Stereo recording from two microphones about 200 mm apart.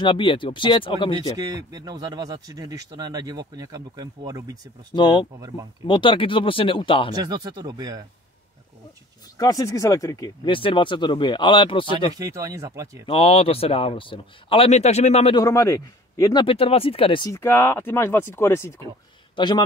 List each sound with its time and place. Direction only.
0.0 s speech: 25° left (ahead or behind)
1.3 s speech: 20° right (ahead or behind)
4.9 s speech: 25° left (ahead or behind)
7.2 s speech: 20° right (ahead or behind)
9.4 s speech: 15° left (ahead or behind)
12.2 s speech: 15° right (ahead or behind)
13.0 s speech: 30° left (ahead or behind)
15.4 s a man's voice: 15° left (ahead or behind)